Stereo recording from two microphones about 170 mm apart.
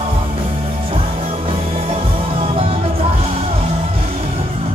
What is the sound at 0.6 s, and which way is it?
Music, 35° right (ahead or behind).